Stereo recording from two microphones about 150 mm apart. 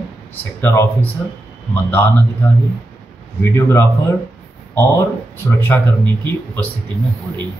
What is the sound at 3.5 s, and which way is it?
Speech, 15° left (ahead or behind).